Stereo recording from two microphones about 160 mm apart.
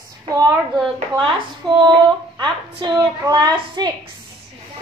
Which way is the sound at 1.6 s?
5° left (ahead or behind).